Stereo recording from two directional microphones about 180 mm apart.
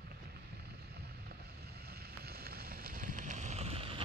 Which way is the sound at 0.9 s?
60° right (ahead or behind).